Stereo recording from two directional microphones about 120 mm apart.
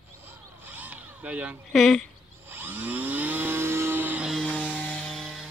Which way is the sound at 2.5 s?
15° right (ahead or behind).